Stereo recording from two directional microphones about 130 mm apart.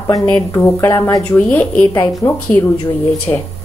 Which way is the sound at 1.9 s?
25° left (ahead or behind).